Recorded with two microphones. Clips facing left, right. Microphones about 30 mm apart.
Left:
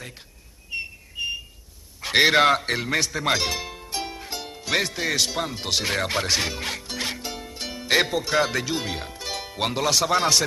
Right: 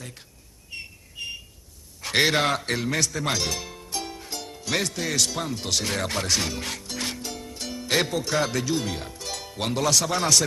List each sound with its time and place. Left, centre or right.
2.0 s a man's voice: centre